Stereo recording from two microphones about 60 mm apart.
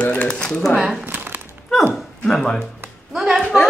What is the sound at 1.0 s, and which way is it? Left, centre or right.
Crumpling, right.